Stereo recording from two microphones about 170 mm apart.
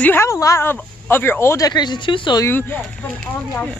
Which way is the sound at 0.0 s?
15° left (ahead or behind).